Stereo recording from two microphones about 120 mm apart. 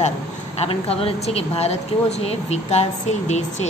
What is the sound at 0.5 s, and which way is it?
A woman's voice, 55° left (ahead or behind).